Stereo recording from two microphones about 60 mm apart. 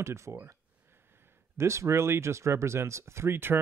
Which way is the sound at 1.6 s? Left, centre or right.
Right.